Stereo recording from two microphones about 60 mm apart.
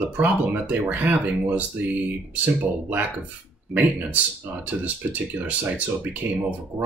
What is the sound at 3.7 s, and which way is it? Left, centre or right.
Speech, right.